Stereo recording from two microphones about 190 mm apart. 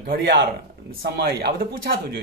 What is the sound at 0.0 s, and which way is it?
Speech, 50° right (ahead or behind).